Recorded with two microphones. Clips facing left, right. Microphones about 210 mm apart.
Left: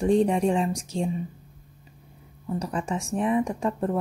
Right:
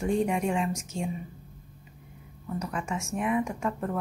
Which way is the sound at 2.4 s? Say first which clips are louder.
Left 4 dB; 30° left (ahead or behind).